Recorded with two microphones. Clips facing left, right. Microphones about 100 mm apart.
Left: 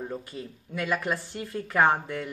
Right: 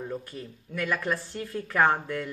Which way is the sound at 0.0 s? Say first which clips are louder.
Even; 15° left (ahead or behind).